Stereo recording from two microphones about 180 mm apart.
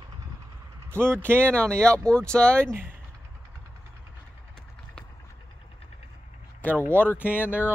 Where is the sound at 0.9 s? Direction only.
10° right (ahead or behind).